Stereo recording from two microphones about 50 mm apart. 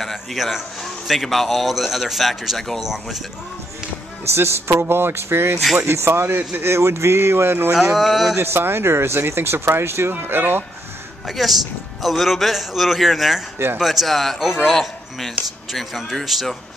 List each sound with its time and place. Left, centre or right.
0.0 s a man's voice: centre
4.3 s speech: right
7.7 s a man's voice: centre
8.4 s speech: right
11.2 s a man's voice: centre
14.5 s speech: centre
14.8 s a man's voice: centre